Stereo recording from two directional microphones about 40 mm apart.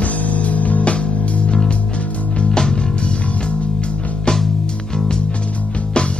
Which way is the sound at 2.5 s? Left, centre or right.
Centre.